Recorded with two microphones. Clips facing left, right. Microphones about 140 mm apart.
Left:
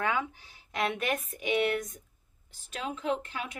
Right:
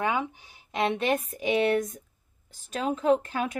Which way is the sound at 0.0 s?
20° right (ahead or behind).